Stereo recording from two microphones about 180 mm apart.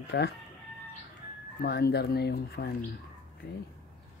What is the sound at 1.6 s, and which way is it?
Speech, 65° left (ahead or behind).